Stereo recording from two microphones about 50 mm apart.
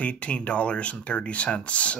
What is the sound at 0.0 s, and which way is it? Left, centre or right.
Speech, left.